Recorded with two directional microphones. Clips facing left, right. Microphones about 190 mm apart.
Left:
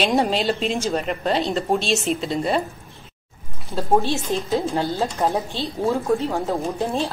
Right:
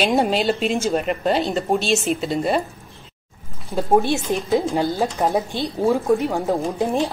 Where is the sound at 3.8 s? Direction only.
15° right (ahead or behind).